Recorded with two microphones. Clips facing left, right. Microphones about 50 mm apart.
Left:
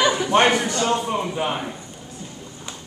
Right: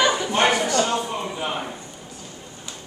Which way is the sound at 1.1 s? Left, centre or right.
Centre.